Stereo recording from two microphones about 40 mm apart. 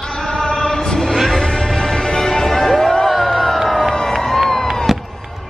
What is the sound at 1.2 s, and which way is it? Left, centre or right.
Music, centre.